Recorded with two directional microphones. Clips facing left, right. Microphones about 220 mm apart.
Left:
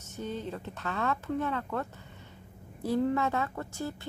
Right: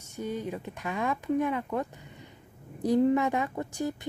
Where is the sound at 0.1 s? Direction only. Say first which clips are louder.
Right 3 dB; 10° right (ahead or behind).